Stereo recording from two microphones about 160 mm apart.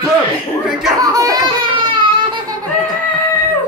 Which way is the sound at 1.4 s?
30° right (ahead or behind).